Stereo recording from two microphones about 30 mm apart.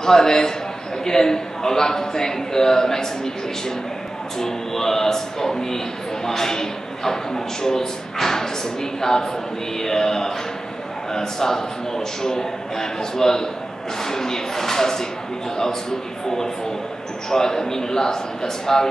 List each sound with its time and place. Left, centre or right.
0.0 s a man's voice: centre
4.4 s a man's voice: centre
9.8 s a man's voice: centre
17.3 s a man's voice: centre